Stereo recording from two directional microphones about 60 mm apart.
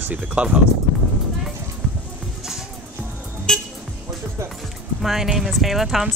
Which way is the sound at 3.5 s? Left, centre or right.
Centre.